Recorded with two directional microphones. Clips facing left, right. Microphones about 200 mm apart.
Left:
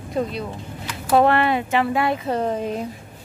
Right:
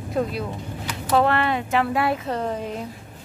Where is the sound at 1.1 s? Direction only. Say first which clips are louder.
Left 3 dB; 15° left (ahead or behind).